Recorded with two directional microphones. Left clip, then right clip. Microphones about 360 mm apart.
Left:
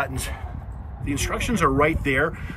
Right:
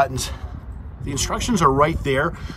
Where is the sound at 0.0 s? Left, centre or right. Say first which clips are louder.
Right 7 dB; centre.